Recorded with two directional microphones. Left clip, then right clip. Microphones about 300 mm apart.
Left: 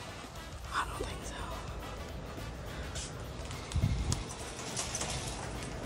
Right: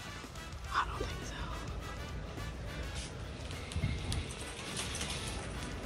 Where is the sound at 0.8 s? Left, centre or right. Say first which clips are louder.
Right 1 dB; centre.